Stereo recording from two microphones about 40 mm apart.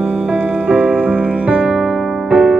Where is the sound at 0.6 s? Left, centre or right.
Right.